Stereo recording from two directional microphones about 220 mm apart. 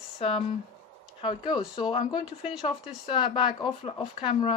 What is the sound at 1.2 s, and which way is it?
Speech, 25° left (ahead or behind).